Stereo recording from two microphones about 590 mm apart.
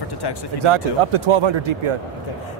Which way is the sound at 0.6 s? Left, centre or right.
Right.